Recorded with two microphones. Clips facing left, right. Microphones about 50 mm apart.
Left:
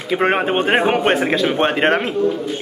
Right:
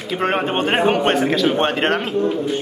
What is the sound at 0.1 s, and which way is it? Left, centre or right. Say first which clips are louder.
A man's voice: left 3 dB; centre.